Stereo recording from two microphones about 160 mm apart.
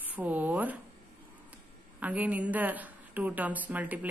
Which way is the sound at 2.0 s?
10° right (ahead or behind).